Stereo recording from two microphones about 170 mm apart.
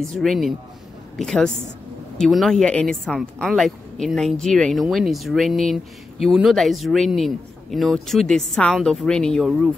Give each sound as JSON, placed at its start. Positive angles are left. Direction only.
{"t": 0.2, "sound": "a woman's voice", "side_deg": 0}